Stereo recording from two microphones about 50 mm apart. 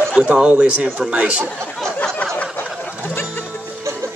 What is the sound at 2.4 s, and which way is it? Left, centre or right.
Music, left.